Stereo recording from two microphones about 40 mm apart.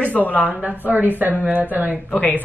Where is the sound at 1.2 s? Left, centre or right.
Right.